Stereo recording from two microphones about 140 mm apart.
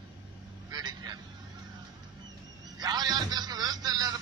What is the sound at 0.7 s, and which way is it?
Speech, 30° right (ahead or behind).